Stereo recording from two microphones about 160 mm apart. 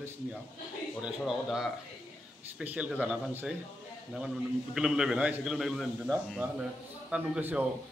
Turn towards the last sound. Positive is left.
turn(degrees=-10)  # may be behind; listen again after turning